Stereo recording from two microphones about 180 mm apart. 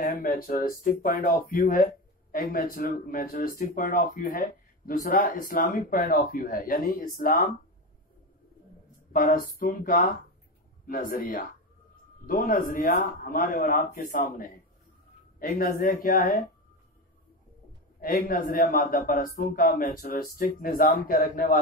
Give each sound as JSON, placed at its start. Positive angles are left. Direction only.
{"t": 0.0, "sound": "speech", "side_deg": 50}
{"t": 9.1, "sound": "speech", "side_deg": 50}
{"t": 18.0, "sound": "speech", "side_deg": 55}